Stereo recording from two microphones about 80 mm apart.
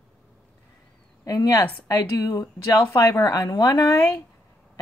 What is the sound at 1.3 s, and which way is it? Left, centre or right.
Speech, left.